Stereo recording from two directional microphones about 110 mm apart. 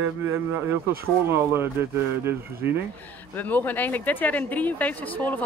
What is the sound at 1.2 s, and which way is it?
Speech, 20° right (ahead or behind).